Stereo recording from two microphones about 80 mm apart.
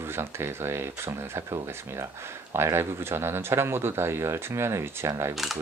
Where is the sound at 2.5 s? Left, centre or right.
Right.